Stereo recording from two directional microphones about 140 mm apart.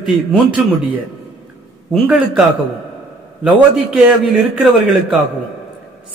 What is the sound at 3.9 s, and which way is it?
Speech, 5° right (ahead or behind).